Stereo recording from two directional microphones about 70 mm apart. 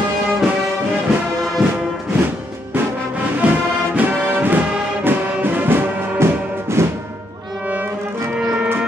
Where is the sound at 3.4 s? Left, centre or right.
Centre.